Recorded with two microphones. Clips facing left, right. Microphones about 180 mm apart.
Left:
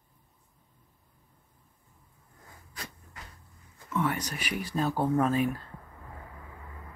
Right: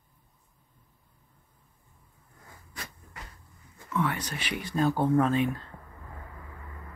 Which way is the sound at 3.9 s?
15° left (ahead or behind).